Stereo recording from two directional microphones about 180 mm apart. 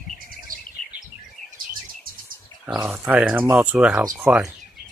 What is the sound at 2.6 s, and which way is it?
Speech, 5° right (ahead or behind).